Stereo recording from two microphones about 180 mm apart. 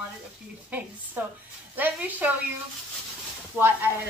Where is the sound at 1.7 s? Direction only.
10° right (ahead or behind).